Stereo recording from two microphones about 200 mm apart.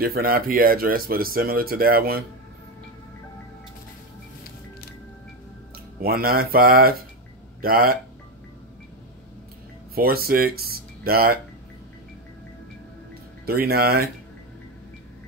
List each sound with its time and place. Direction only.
0.0 s speech: 50° right (ahead or behind)
6.0 s speech: 45° right (ahead or behind)
9.9 s speech: 50° right (ahead or behind)
13.5 s speech: 50° right (ahead or behind)